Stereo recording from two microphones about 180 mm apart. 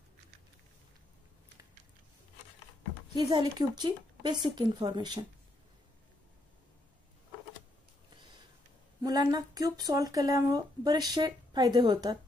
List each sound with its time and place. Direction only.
3.2 s speech: 25° right (ahead or behind)
9.0 s speech: 20° right (ahead or behind)